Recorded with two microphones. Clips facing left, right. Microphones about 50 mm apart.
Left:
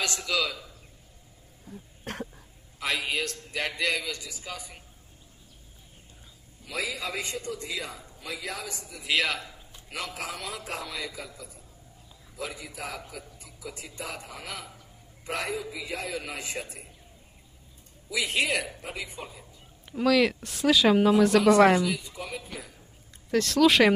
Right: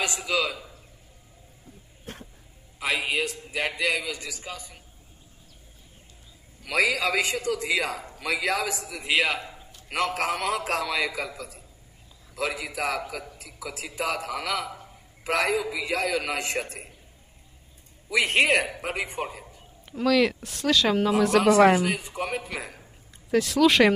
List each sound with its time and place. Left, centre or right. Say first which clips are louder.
0.0 s a man's voice: right 2 dB; centre
2.1 s cough: left 4 dB; left
2.8 s a man's voice: right 3 dB; centre
4.5 s speech: right 1 dB; centre
6.6 s a man's voice: right 9 dB; right
9.1 s a man's voice: right 3 dB; centre
9.8 s a man's voice: right 9 dB; right
18.1 s a man's voice: right 6 dB; right
18.7 s a man's voice: right 7 dB; right
19.9 s speech: right 1 dB; centre
21.8 s a man's voice: right 3 dB; right
23.3 s speech: right 1 dB; centre